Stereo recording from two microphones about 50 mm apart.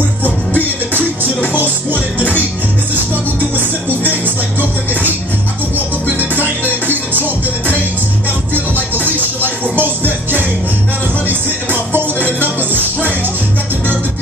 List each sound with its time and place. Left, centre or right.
1.5 s music: right
6.4 s music: right
8.7 s music: right